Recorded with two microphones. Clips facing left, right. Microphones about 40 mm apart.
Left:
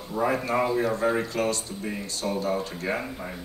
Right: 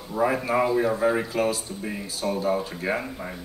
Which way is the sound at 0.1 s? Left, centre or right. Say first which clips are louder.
Right 2 dB; centre.